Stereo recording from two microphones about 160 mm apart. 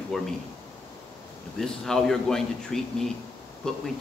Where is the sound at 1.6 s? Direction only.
5° left (ahead or behind).